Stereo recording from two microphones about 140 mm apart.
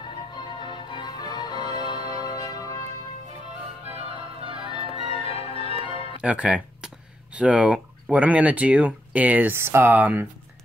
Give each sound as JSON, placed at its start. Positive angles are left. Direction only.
{"t": 0.4, "sound": "music", "side_deg": 35}
{"t": 3.9, "sound": "music", "side_deg": -40}
{"t": 4.6, "sound": "music", "side_deg": 35}
{"t": 6.2, "sound": "speech", "side_deg": -10}